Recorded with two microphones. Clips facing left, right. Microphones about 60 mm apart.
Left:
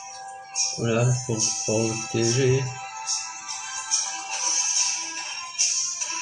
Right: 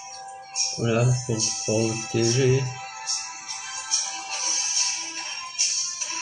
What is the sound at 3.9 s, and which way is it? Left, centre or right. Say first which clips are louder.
Music: even; centre.